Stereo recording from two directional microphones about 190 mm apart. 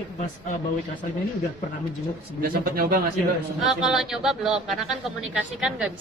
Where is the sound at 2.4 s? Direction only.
50° right (ahead or behind).